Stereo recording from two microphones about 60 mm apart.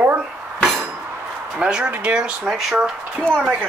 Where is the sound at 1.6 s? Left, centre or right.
Centre.